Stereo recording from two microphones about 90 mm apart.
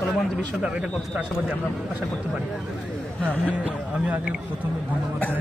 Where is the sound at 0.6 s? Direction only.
10° right (ahead or behind).